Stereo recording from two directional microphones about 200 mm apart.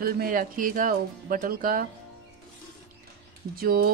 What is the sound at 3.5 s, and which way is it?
Music, 50° right (ahead or behind).